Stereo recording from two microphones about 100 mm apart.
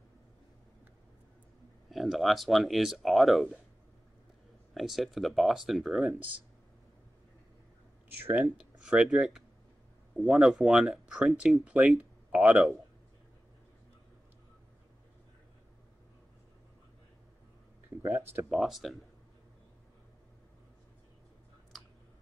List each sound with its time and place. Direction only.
1.9 s speech: centre (ahead or behind)
4.7 s speech: centre (ahead or behind)
8.2 s speech: 15° right (ahead or behind)
12.0 s a sound: 10° right (ahead or behind)
17.8 s a sound: 20° right (ahead or behind)
18.5 s speech: centre (ahead or behind)